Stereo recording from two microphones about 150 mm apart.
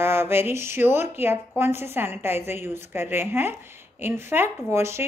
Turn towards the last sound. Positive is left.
turn(degrees=-15)  # may be behind; listen again after turning